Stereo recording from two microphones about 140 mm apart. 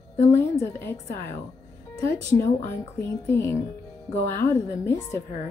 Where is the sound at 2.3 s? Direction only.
15° left (ahead or behind).